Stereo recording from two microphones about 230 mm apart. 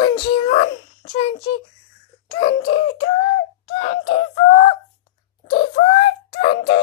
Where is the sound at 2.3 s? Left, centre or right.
Left.